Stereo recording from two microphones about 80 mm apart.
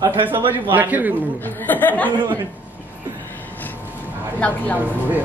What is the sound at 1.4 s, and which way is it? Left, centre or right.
Speech, left.